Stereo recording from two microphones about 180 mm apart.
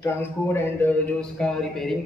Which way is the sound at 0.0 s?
10° left (ahead or behind).